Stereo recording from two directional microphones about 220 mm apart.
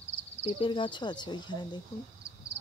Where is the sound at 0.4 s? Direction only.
25° left (ahead or behind).